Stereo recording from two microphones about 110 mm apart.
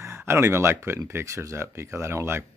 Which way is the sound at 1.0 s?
25° right (ahead or behind).